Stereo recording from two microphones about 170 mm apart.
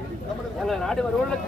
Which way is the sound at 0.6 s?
Centre (ahead or behind).